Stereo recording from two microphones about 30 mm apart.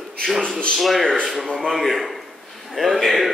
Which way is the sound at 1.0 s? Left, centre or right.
Left.